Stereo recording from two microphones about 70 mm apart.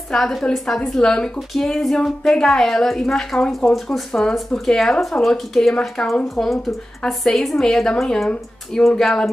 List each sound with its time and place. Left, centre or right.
0.1 s a woman's voice: centre